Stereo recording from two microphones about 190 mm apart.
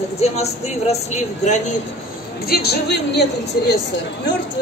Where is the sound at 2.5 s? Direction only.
55° left (ahead or behind).